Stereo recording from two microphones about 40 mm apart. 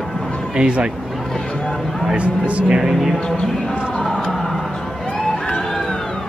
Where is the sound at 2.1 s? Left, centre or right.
Right.